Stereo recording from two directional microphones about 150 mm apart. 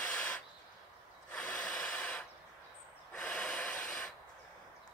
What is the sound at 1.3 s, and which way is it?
Rub, 5° left (ahead or behind).